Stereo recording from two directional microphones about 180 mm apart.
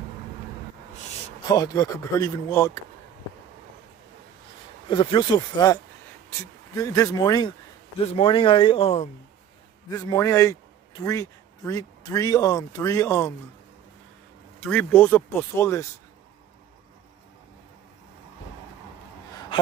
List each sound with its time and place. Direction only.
1.5 s speech: 20° left (ahead or behind)
4.8 s speech: 25° left (ahead or behind)
8.0 s a man's voice: 35° left (ahead or behind)
9.8 s a man's voice: 20° left (ahead or behind)
14.6 s speech: 5° left (ahead or behind)